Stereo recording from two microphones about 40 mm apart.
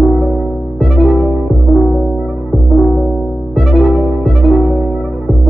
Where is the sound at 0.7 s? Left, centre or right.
Centre.